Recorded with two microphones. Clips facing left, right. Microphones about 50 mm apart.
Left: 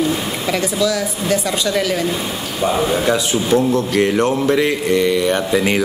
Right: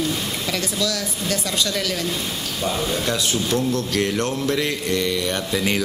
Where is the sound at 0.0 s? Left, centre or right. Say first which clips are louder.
Left 6 dB; centre.